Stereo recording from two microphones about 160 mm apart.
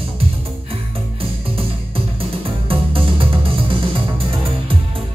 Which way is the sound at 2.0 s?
35° right (ahead or behind).